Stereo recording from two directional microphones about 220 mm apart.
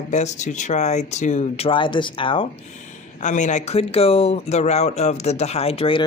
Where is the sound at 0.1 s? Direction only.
30° left (ahead or behind).